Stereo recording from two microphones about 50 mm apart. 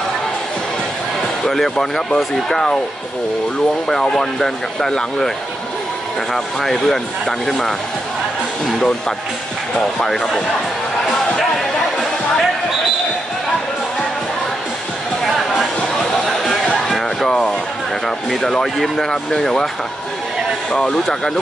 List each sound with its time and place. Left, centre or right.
1.5 s speech: centre
4.1 s speech: centre
6.3 s speech: centre
9.9 s speech: centre
17.3 s a sound: centre
18.0 s speech: centre
20.7 s speech: left